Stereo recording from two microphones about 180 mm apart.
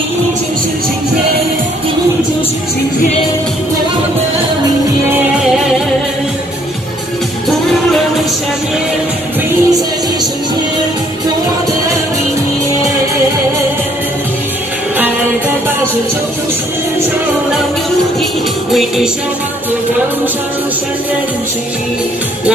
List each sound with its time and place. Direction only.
9.5 s music: 20° right (ahead or behind)
18.7 s music: centre (ahead or behind)